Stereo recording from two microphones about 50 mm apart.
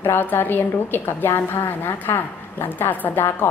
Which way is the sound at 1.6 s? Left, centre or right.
Left.